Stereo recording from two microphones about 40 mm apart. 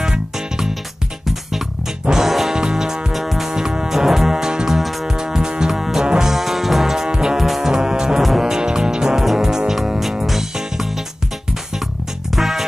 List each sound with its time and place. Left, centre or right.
0.0 s music: centre
2.0 s music: centre
2.5 s music: centre
3.1 s music: centre
8.2 s music: centre
12.4 s music: centre